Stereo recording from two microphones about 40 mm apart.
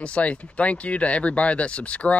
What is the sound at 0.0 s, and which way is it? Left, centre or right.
Speech, left.